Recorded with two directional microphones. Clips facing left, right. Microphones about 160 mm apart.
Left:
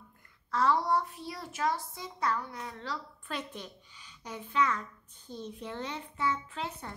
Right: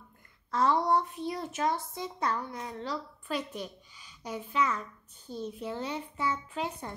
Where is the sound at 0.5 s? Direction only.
20° right (ahead or behind).